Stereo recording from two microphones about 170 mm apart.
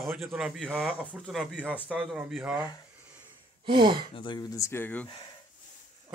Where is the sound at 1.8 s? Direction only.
5° right (ahead or behind).